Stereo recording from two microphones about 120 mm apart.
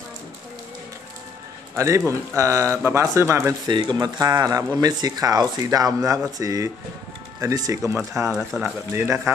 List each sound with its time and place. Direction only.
1.8 s speech: 25° right (ahead or behind)
3.6 s speech: 40° right (ahead or behind)
8.5 s speech: centre (ahead or behind)
8.9 s speech: 25° right (ahead or behind)